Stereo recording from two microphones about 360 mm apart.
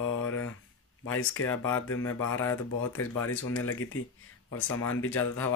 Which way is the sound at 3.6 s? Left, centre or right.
Left.